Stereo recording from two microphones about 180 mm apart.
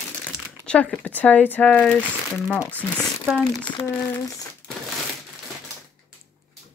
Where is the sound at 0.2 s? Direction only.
5° left (ahead or behind).